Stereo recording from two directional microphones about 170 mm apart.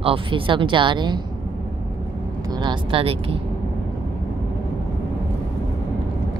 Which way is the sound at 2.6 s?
30° right (ahead or behind).